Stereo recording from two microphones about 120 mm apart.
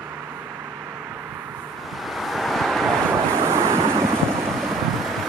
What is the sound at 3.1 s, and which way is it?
Waves, 20° right (ahead or behind).